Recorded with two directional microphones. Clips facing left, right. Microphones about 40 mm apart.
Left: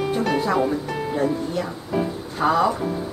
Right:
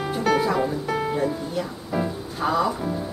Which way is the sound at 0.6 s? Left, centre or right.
Centre.